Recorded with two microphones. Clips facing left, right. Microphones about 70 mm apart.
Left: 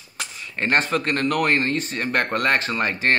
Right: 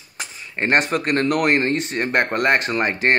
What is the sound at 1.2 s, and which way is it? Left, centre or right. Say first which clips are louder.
Speech: right 2 dB; centre.